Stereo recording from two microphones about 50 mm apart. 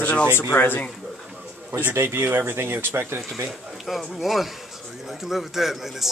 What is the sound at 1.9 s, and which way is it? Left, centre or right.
Speech, right.